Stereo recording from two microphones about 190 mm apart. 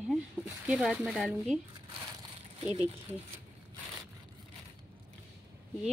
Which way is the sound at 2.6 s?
35° right (ahead or behind).